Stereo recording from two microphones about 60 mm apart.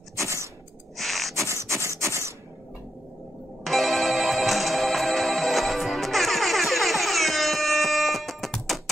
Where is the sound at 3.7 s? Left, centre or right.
Centre.